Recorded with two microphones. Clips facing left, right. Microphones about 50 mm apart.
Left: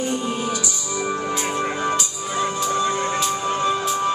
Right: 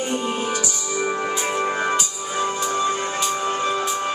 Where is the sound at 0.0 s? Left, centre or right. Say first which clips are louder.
Even; right.